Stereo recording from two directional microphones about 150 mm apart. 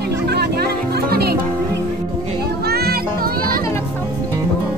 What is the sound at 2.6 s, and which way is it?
Music, 90° right.